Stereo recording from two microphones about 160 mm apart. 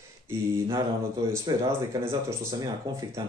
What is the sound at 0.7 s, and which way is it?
Speech, 20° right (ahead or behind).